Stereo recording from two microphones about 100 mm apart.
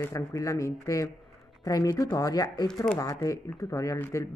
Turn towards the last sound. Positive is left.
turn(degrees=25)  # may be behind; listen again after turning